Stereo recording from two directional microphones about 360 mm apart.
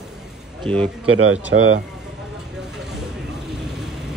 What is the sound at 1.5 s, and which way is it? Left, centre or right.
Speech, right.